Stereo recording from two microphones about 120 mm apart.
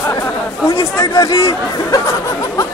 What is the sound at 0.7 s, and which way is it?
Speech, 25° left (ahead or behind).